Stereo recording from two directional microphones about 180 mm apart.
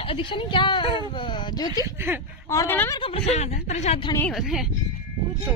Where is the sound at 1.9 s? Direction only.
10° right (ahead or behind).